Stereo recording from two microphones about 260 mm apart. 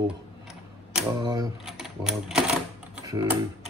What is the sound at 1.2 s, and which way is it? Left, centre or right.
Typewriter, centre.